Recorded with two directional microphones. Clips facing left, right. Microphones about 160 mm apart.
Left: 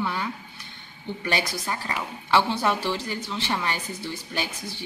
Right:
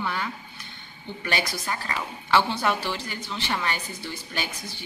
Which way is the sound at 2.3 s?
5° left (ahead or behind).